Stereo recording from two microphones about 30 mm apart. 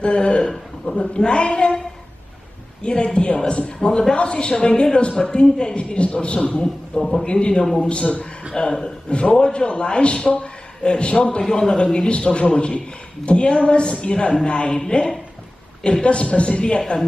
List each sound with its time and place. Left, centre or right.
0.0 s a man's voice: left
0.4 s a sound: centre
0.9 s a man's voice: left
2.8 s a man's voice: left
7.6 s a man's voice: centre
7.9 s a man's voice: left
11.4 s a man's voice: centre
11.7 s a man's voice: left
15.8 s a man's voice: left
16.6 s a man's voice: left